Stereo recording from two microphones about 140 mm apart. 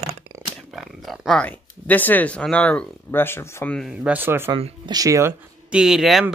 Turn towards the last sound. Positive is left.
turn(degrees=0)  # may be behind; listen again after turning